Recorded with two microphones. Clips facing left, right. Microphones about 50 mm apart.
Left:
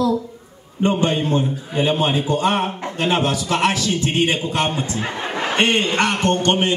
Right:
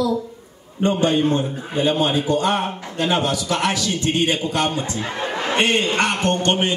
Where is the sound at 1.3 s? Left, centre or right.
Left.